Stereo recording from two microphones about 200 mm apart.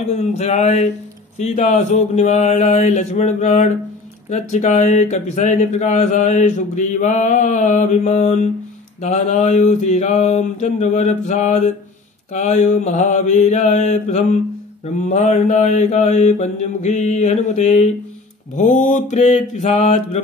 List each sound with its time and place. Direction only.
0.1 s speech: 35° left (ahead or behind)